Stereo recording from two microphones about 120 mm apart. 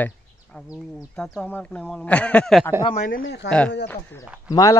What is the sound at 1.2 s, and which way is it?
A man's voice, 10° left (ahead or behind).